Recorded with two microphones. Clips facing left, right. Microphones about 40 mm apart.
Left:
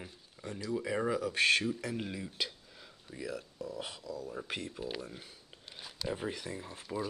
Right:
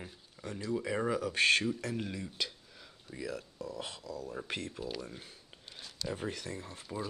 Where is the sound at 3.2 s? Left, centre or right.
Centre.